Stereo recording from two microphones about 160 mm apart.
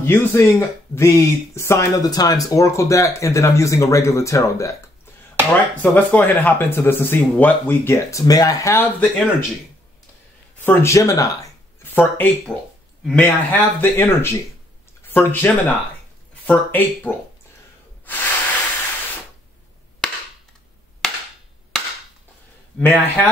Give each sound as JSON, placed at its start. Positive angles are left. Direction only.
{"t": 0.0, "sound": "speech", "side_deg": 15}
{"t": 10.6, "sound": "speech", "side_deg": 15}
{"t": 18.0, "sound": "hiss", "side_deg": 10}
{"t": 21.0, "sound": "cap gun", "side_deg": 0}
{"t": 22.8, "sound": "speech", "side_deg": 10}